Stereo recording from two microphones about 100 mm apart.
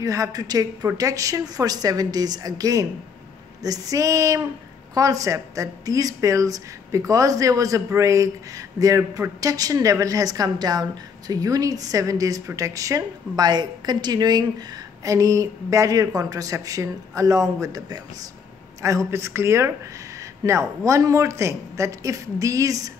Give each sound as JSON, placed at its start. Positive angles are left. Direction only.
{"t": 0.0, "sound": "a woman's voice", "side_deg": -35}